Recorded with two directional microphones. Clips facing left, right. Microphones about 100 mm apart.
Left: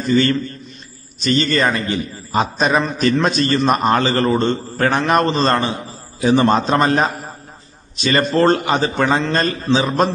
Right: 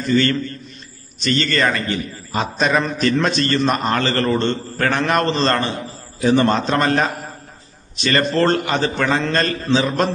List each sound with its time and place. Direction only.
0.1 s a man's voice: 15° left (ahead or behind)